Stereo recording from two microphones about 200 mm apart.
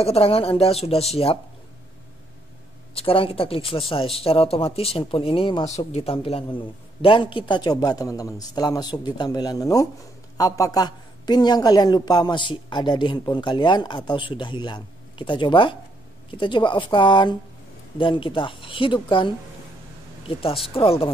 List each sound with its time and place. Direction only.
0.0 s a woman's voice: 30° left (ahead or behind)
2.9 s a woman's voice: 30° left (ahead or behind)